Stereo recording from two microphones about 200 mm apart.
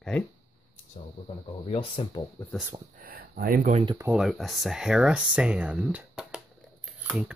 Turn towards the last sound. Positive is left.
turn(degrees=-5)  # may be behind; listen again after turning